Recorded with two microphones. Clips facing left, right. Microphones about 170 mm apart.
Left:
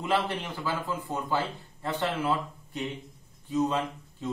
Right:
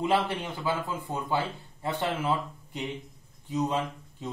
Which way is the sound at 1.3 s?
15° right (ahead or behind).